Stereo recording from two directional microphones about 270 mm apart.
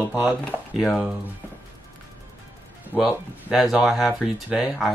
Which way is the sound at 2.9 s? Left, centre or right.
Centre.